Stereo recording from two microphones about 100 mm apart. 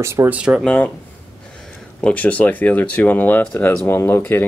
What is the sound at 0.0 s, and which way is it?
Speech, 25° right (ahead or behind).